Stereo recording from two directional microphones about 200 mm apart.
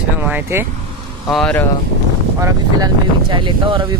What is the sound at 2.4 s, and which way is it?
Speech, 20° right (ahead or behind).